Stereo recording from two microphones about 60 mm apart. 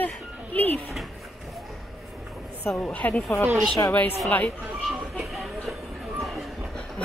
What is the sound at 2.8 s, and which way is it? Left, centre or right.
Speech, left.